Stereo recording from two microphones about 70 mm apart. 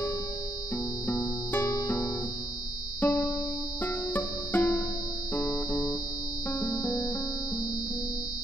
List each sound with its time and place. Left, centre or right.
1.0 s music: left